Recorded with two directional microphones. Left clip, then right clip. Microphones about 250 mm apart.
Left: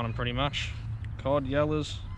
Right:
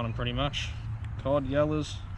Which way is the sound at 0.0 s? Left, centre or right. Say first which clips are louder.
Left 1 dB; centre.